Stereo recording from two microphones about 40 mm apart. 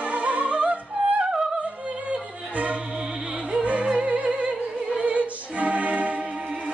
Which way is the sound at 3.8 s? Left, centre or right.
Right.